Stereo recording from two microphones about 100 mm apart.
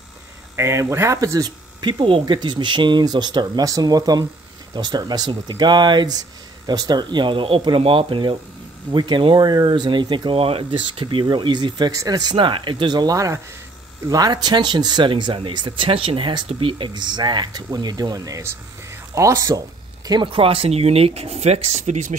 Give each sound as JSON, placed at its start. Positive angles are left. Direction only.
{"t": 0.6, "sound": "speech", "side_deg": -30}
{"t": 1.8, "sound": "speech", "side_deg": -50}
{"t": 10.3, "sound": "speech", "side_deg": -75}
{"t": 11.9, "sound": "speech", "side_deg": -35}
{"t": 20.2, "sound": "speech", "side_deg": -70}